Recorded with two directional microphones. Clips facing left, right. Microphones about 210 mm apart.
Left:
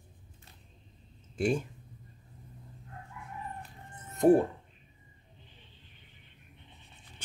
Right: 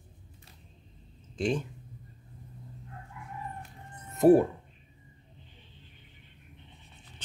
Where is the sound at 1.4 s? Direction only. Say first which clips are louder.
Even; 10° left (ahead or behind).